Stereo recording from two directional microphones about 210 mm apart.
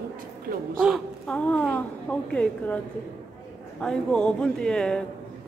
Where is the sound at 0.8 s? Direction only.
Centre (ahead or behind).